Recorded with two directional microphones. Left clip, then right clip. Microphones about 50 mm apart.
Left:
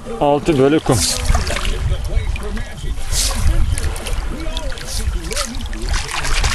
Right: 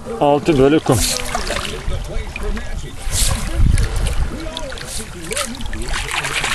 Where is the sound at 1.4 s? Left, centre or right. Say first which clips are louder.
Even; centre.